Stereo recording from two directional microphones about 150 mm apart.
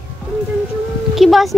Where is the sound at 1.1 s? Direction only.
Centre (ahead or behind).